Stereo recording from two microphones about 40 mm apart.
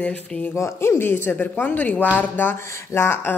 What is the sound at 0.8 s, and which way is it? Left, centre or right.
Speech, left.